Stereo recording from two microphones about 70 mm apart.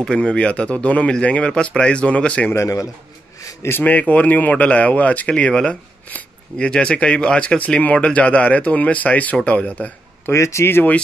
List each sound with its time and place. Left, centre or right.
0.0 s speech: centre
2.5 s a man's voice: left
3.3 s a sound: left
3.7 s speech: left
6.0 s a sound: left
6.7 s a man's voice: centre
10.3 s speech: left